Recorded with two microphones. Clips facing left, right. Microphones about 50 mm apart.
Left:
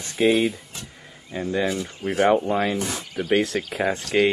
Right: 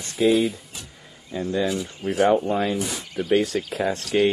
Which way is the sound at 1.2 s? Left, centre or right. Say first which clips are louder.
Even; left.